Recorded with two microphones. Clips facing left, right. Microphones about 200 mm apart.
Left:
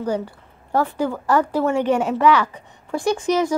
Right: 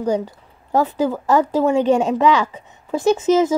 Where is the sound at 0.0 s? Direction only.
15° right (ahead or behind).